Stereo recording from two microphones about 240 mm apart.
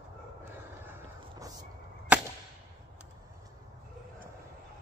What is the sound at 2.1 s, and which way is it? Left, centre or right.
Whip, centre.